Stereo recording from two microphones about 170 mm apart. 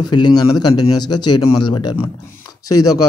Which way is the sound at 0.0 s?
25° left (ahead or behind).